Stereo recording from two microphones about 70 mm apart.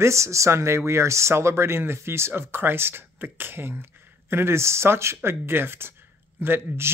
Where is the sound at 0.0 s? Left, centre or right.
Right.